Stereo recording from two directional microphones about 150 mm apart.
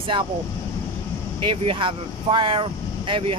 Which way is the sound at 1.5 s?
40° right (ahead or behind).